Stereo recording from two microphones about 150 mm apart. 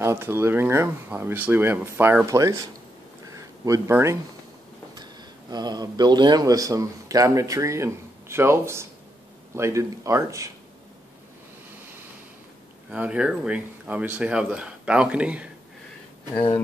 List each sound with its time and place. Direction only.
0.0 s speech: 15° right (ahead or behind)
3.3 s a sound: 20° right (ahead or behind)
5.5 s a man's voice: 30° right (ahead or behind)
12.9 s speech: 10° right (ahead or behind)
16.3 s speech: 15° left (ahead or behind)